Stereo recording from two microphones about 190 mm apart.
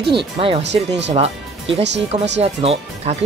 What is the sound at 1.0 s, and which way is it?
Speech, 35° right (ahead or behind).